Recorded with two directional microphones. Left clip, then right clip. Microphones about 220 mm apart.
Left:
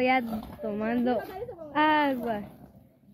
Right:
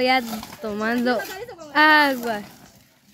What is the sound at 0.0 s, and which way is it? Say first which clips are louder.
Speech: right 5 dB; 25° right (ahead or behind).